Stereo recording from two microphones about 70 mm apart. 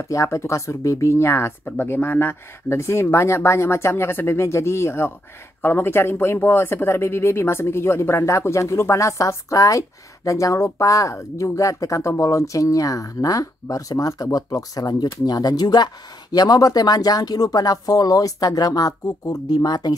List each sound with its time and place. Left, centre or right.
0.1 s speech: left
1.6 s speech: left
19.2 s speech: left